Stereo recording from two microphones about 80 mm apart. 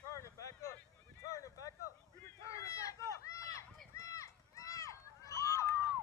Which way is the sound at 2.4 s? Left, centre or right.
Left.